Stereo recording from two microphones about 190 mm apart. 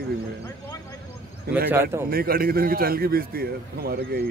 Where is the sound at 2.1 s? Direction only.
50° right (ahead or behind).